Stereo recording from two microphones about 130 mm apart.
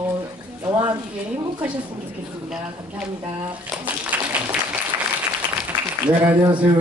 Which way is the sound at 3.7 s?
10° right (ahead or behind).